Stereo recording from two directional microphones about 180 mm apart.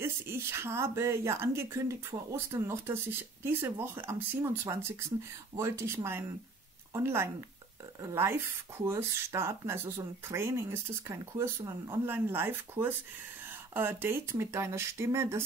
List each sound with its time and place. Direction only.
0.0 s speech: 15° right (ahead or behind)